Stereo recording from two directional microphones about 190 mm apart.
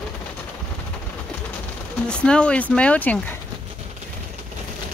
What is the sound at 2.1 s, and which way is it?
Speech, 5° left (ahead or behind).